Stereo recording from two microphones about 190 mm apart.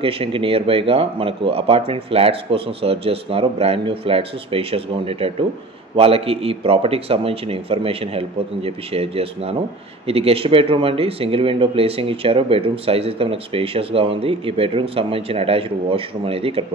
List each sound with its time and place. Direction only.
0.0 s a man's voice: 30° right (ahead or behind)